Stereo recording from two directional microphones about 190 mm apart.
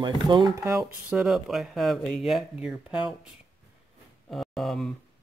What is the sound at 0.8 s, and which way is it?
Speech, 5° right (ahead or behind).